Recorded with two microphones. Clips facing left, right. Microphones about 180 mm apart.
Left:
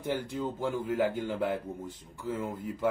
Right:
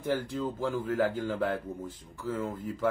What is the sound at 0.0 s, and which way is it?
A man's voice, 20° left (ahead or behind).